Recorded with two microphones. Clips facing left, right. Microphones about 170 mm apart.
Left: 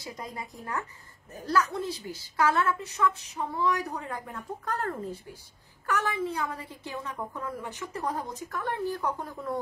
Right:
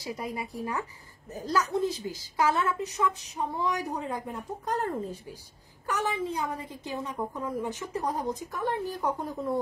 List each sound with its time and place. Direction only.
0.0 s a woman's voice: 15° right (ahead or behind)